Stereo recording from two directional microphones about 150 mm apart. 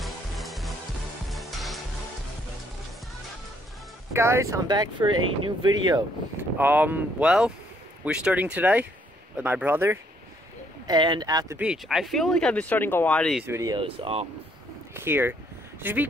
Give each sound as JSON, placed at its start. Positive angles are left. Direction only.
{"t": 0.0, "sound": "music", "side_deg": 0}
{"t": 1.3, "sound": "stir", "side_deg": 0}
{"t": 4.1, "sound": "speech", "side_deg": -20}
{"t": 6.3, "sound": "speech", "side_deg": -10}
{"t": 10.9, "sound": "speech", "side_deg": -30}
{"t": 11.5, "sound": "speech", "side_deg": -5}
{"t": 13.5, "sound": "speech", "side_deg": -20}
{"t": 13.7, "sound": "speech", "side_deg": -40}
{"t": 15.0, "sound": "speech", "side_deg": -15}